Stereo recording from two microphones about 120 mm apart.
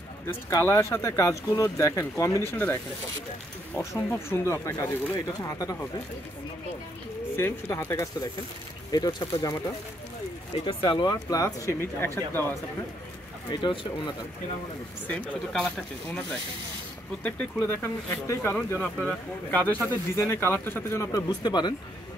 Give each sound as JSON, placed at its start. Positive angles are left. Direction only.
{"t": 0.3, "sound": "speech", "side_deg": 20}
{"t": 7.3, "sound": "speech", "side_deg": 25}
{"t": 10.5, "sound": "speech", "side_deg": 45}
{"t": 11.8, "sound": "speech", "side_deg": 20}
{"t": 13.5, "sound": "speech", "side_deg": 40}
{"t": 15.0, "sound": "speech", "side_deg": 5}
{"t": 17.2, "sound": "speech", "side_deg": 15}
{"t": 21.3, "sound": "speech", "side_deg": 35}